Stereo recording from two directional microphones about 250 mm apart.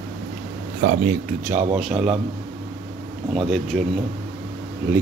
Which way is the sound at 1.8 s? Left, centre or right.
Centre.